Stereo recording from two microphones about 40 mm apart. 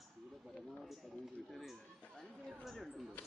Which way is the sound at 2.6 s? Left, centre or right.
Centre.